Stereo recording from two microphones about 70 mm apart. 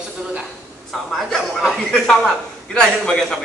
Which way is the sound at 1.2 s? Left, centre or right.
Centre.